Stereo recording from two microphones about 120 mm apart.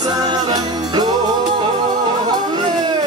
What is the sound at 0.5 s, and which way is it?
Music, 35° right (ahead or behind).